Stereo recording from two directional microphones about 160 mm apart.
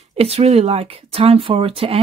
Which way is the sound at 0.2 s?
40° right (ahead or behind).